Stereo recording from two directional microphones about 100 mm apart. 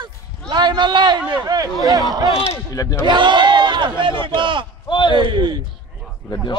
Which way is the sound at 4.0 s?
55° right (ahead or behind).